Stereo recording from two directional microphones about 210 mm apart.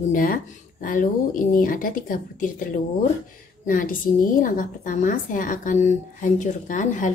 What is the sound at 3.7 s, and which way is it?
Speech, 40° left (ahead or behind).